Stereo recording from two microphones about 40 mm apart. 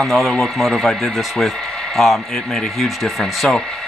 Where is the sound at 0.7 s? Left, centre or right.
Centre.